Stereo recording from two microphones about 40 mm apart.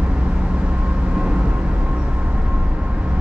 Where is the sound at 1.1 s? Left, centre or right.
Right.